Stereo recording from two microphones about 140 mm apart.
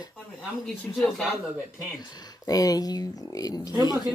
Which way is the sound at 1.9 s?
30° left (ahead or behind).